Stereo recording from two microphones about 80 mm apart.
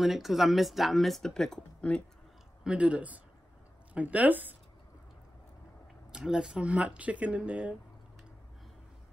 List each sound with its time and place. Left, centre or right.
0.0 s speech: centre
2.6 s speech: centre
6.1 s speech: centre